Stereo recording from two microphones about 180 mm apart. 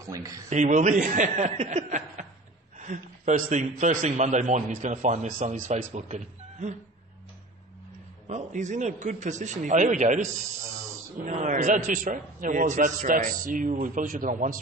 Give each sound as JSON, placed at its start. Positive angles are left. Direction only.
{"t": 0.0, "sound": "a man's voice", "side_deg": -20}
{"t": 0.5, "sound": "a man's voice", "side_deg": -40}
{"t": 8.3, "sound": "a man's voice", "side_deg": -40}